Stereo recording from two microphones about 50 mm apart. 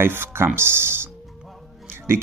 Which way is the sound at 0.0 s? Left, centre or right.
Right.